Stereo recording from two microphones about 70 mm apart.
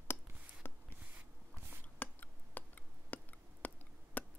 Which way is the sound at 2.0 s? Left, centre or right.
Left.